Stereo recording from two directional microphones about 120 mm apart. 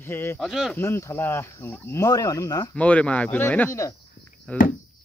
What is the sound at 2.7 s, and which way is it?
Speech, 10° left (ahead or behind).